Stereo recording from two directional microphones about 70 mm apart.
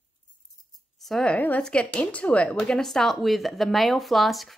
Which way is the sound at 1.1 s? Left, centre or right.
Centre.